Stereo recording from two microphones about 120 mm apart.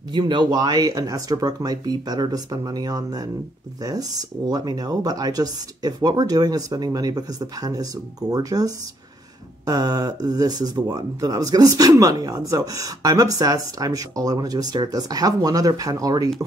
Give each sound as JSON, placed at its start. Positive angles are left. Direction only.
{"t": 0.1, "sound": "speech", "side_deg": -40}